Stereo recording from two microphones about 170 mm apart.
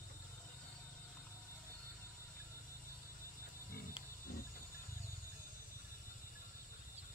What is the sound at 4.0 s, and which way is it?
Wild animals, 30° left (ahead or behind).